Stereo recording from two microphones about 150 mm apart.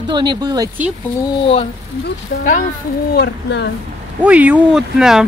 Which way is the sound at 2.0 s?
60° left (ahead or behind).